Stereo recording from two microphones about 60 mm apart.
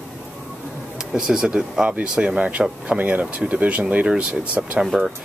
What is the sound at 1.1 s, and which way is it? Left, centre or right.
Speech, centre.